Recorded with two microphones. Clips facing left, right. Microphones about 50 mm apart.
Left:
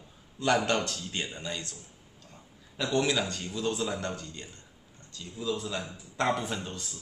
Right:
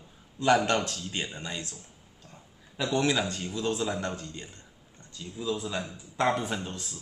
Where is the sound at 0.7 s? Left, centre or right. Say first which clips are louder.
Right 1 dB; centre.